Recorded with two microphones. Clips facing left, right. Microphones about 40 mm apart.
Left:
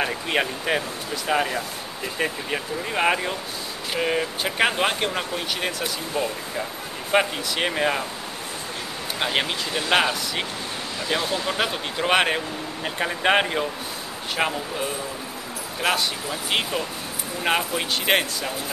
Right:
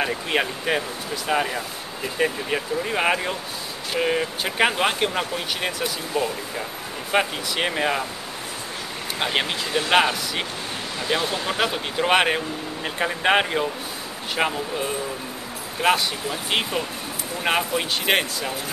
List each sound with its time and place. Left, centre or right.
0.0 s speech: centre
9.2 s speech: centre
15.8 s speech: centre